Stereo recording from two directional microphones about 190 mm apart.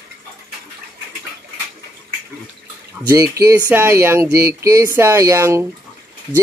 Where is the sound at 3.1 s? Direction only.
15° right (ahead or behind).